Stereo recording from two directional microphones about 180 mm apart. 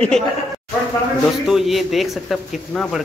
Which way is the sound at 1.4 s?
Centre (ahead or behind).